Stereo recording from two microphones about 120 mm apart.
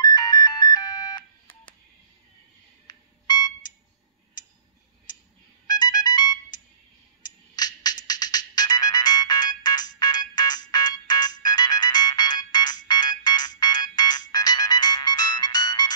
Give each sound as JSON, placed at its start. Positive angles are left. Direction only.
{"t": 0.0, "sound": "ringtone", "side_deg": 35}
{"t": 2.9, "sound": "ringtone", "side_deg": 35}
{"t": 5.7, "sound": "ringtone", "side_deg": 35}
{"t": 7.2, "sound": "music", "side_deg": 35}
{"t": 9.9, "sound": "ringtone", "side_deg": 35}
{"t": 14.3, "sound": "music", "side_deg": 35}